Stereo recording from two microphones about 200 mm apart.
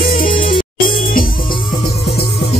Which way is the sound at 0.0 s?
45° left (ahead or behind).